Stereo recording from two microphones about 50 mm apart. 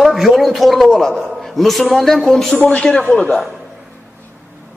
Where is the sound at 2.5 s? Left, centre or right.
Left.